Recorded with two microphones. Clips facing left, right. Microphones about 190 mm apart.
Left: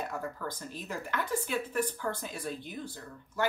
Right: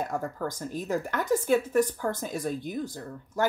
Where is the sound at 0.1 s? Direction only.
45° right (ahead or behind).